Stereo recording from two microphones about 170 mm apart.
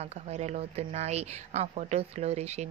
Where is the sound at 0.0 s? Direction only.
40° right (ahead or behind).